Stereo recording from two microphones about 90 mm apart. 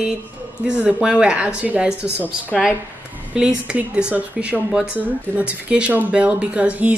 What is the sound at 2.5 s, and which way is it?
Speech, 5° left (ahead or behind).